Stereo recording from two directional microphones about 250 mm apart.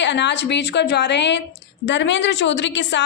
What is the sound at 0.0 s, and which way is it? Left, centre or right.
A woman's voice, left.